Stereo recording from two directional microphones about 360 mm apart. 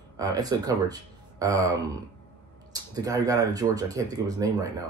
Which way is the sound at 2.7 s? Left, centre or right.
Centre.